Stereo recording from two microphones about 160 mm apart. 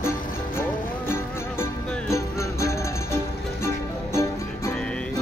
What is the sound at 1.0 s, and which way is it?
Music, 15° left (ahead or behind).